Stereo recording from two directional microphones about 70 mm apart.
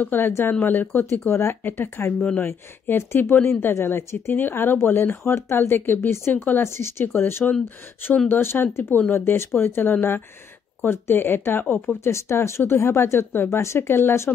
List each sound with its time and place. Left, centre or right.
0.0 s speech: left
1.3 s speech: left
2.1 s speech: centre
2.4 s speech: left
6.6 s speech: left
12.0 s speech: left